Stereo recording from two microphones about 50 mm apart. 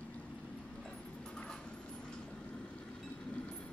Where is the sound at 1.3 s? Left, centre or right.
Centre.